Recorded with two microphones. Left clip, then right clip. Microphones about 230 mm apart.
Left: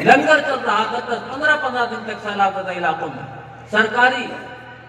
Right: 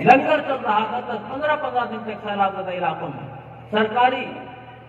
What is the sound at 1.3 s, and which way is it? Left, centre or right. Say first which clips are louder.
A man's voice: left 4 dB; left.